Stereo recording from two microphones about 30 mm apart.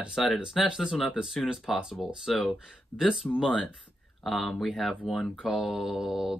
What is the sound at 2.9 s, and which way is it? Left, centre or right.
Speech, left.